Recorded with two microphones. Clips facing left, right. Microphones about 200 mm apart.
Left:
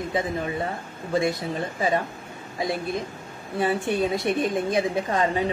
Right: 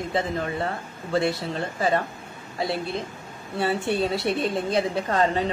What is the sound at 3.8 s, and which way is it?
Speech, 45° left (ahead or behind).